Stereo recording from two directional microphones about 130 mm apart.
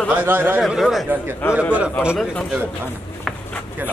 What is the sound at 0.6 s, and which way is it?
A man's voice, centre (ahead or behind).